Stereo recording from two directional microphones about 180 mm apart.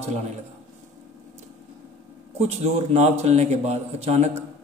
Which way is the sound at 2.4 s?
35° right (ahead or behind).